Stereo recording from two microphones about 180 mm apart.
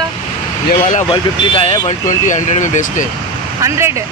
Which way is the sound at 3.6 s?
15° right (ahead or behind).